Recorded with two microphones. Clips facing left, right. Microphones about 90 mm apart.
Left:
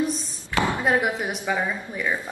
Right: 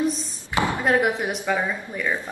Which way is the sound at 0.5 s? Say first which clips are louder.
Even; 20° right (ahead or behind).